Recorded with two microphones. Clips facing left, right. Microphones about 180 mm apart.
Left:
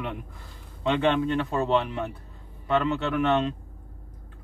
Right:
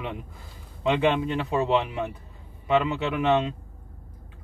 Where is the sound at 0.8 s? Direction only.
5° right (ahead or behind).